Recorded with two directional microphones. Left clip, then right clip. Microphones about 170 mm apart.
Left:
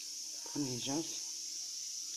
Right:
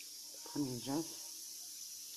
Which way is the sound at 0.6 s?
Centre (ahead or behind).